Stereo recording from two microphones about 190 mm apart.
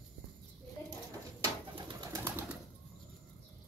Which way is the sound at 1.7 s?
20° right (ahead or behind).